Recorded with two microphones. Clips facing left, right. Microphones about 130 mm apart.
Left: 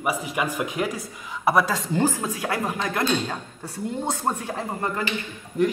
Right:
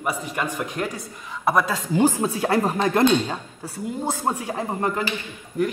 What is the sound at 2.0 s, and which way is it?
Speech, 20° right (ahead or behind).